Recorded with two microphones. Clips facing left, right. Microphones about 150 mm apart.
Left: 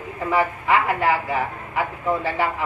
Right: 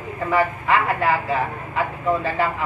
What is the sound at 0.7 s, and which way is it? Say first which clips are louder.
A man's voice: left 2 dB; 20° left (ahead or behind).